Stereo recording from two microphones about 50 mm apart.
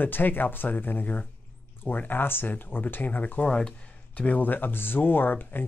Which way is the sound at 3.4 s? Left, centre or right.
Centre.